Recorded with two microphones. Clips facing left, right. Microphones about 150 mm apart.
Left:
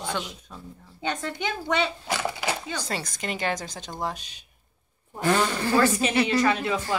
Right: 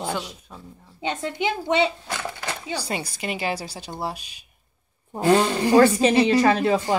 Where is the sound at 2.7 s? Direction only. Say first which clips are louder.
Right 3 dB; 10° right (ahead or behind).